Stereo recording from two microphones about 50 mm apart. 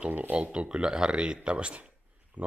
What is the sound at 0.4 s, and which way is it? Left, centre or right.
Speech, right.